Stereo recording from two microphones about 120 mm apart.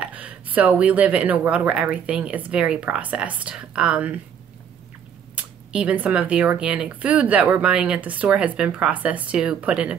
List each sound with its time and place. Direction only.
0.0 s speech: 10° right (ahead or behind)
5.3 s speech: 10° right (ahead or behind)